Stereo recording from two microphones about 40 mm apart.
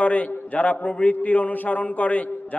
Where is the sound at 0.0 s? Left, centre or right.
Left.